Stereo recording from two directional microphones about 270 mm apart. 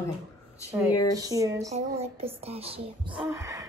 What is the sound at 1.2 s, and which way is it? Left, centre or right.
Speech, centre.